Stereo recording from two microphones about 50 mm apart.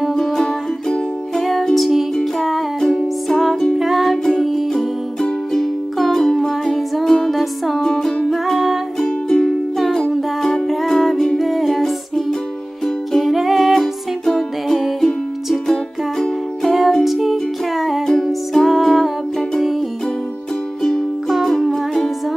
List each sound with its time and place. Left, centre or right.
0.1 s music: centre
9.0 s music: centre
9.5 s music: centre
21.3 s music: centre